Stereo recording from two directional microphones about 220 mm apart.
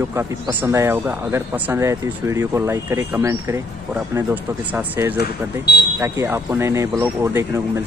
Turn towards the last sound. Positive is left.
turn(degrees=-10)  # may be behind; listen again after turning